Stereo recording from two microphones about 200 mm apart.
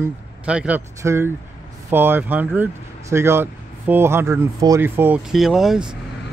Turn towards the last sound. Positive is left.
turn(degrees=0)  # may be behind; listen again after turning